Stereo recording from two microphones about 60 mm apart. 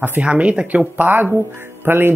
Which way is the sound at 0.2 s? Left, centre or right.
Right.